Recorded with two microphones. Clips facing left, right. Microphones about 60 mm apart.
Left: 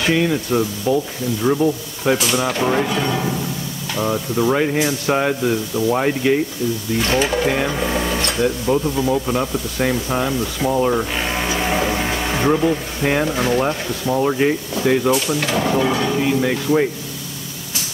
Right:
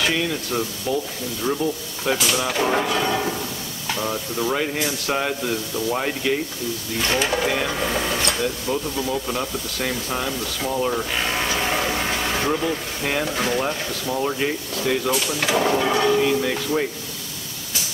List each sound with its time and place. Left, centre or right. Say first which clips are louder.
0.0 s speech: left 5 dB; centre
3.9 s speech: left 5 dB; centre
7.0 s speech: left 3 dB; centre
7.5 s a sound: left 3 dB; centre
8.4 s speech: left 6 dB; centre
15.4 s speech: right 3 dB; centre
16.3 s speech: left 4 dB; centre